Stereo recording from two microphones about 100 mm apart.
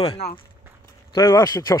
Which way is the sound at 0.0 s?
80° left.